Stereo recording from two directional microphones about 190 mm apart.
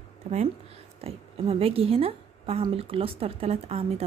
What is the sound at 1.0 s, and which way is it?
A woman's voice, 30° right (ahead or behind).